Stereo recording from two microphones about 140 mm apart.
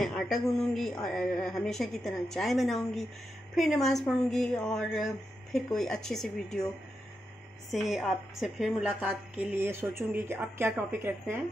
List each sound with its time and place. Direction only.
0.0 s a woman's voice: centre (ahead or behind)
7.7 s a woman's voice: centre (ahead or behind)